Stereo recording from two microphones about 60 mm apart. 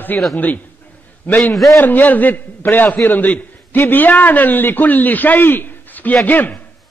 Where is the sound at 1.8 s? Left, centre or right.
Left.